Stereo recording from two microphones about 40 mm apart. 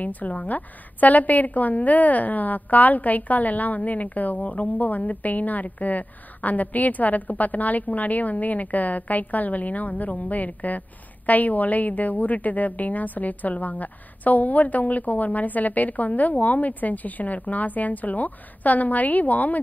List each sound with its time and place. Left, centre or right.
0.0 s a woman's voice: left